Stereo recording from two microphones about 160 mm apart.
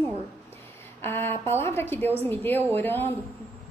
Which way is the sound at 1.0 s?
15° left (ahead or behind).